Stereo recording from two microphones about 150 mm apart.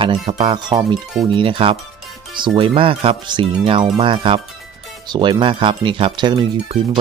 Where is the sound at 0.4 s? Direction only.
30° right (ahead or behind).